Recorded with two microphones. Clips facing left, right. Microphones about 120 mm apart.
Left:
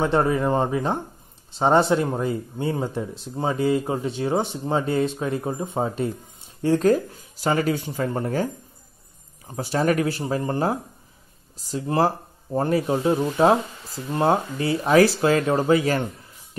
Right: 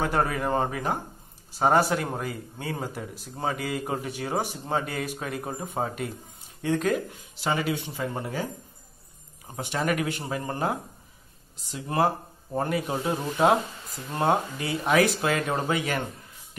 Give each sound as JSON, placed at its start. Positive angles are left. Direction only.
{"t": 0.0, "sound": "speech", "side_deg": 25}
{"t": 9.6, "sound": "speech", "side_deg": 35}